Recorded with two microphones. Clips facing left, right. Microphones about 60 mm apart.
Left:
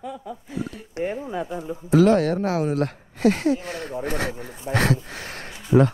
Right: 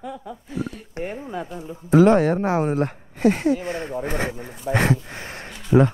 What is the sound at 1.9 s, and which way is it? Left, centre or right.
Speech, right.